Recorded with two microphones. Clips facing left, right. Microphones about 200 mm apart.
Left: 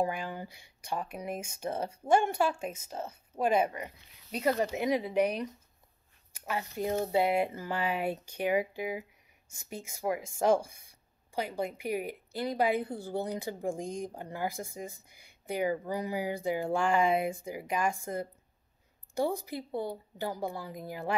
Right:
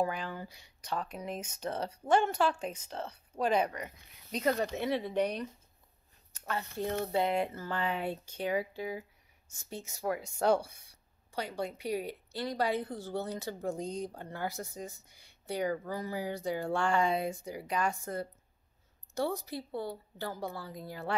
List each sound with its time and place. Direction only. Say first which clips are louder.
0.0 s speech: left 1 dB; 15° left (ahead or behind)
11.3 s speech: left 3 dB; 10° left (ahead or behind)
13.7 s speech: even; 50° left (ahead or behind)
14.1 s speech: left 2 dB; 10° left (ahead or behind)